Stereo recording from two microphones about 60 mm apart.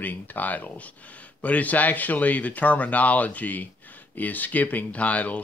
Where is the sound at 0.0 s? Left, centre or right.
Left.